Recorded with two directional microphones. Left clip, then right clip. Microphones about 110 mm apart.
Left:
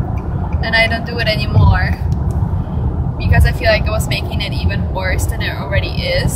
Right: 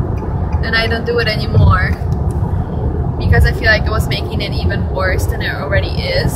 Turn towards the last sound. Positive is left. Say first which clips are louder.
# right 1 dB
turn(degrees=20)  # may be behind; listen again after turning